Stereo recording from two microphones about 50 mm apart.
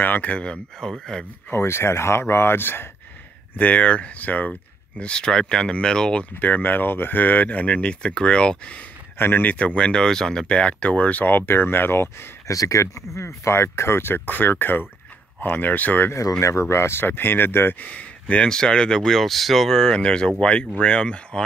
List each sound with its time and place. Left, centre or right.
0.0 s speech: left
0.7 s speech: centre
1.5 s speech: left
3.5 s speech: left
6.4 s speech: left
9.2 s speech: left
9.8 s speech: centre; by 12.3 s left
12.4 s speech: left
16.1 s speech: left
17.0 s speech: left
17.7 s speech: left
18.5 s speech: centre